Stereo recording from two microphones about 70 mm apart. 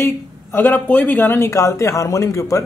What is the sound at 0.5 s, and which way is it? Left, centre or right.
Speech, left.